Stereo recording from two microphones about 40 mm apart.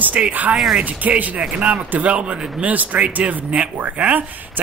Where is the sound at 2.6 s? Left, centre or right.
Right.